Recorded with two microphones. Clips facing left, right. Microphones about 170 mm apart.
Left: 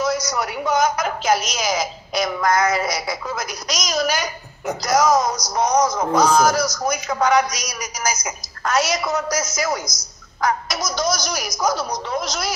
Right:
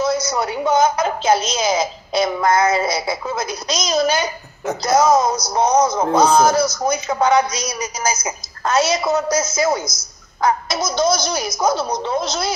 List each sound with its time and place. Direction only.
0.0 s a woman's voice: 25° right (ahead or behind)